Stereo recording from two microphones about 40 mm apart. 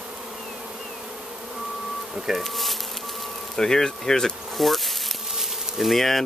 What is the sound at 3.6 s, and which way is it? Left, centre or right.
Speech, centre.